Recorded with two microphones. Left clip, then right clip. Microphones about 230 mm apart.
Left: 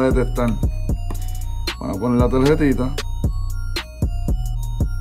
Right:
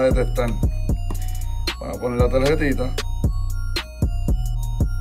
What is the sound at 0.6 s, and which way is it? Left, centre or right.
Music, centre.